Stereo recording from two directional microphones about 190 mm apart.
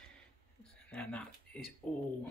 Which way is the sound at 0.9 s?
5° left (ahead or behind).